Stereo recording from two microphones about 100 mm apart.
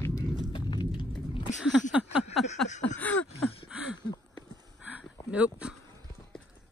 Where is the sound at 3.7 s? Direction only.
5° right (ahead or behind).